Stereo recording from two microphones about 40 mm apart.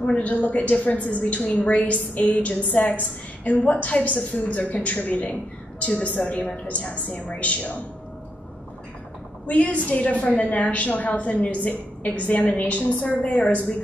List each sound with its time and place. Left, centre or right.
0.0 s a woman's voice: left
9.5 s a woman's voice: left